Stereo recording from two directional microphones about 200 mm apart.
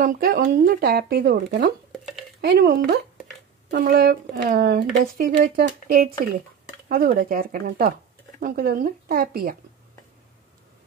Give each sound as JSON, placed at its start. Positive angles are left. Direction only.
{"t": 0.0, "sound": "speech", "side_deg": -45}